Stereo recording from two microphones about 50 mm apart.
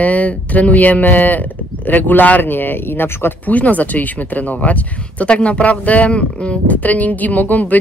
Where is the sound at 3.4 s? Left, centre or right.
Left.